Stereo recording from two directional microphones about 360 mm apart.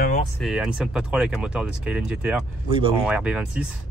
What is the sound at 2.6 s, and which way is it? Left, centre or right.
Speech, centre.